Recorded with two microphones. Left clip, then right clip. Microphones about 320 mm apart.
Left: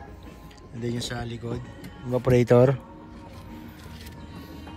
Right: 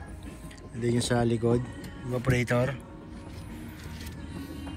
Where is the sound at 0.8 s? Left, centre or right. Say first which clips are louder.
Right 5 dB; centre.